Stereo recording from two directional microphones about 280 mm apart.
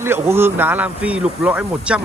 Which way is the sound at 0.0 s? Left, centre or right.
Centre.